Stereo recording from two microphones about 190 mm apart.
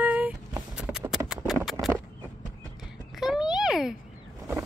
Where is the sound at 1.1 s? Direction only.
Centre (ahead or behind).